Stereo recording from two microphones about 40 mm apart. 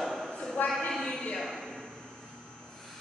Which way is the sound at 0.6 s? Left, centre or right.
Left.